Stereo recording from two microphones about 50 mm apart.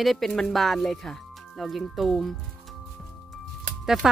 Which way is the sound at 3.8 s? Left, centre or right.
Centre.